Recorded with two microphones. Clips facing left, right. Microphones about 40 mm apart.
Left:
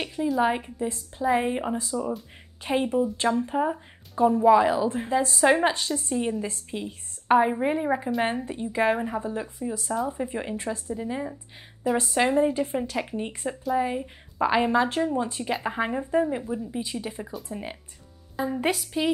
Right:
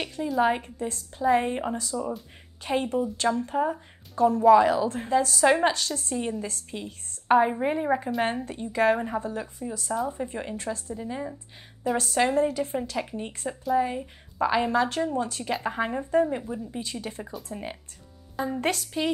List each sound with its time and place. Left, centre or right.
0.2 s a woman's voice: centre
6.1 s a woman's voice: centre; by 12.7 s left
12.9 s a woman's voice: centre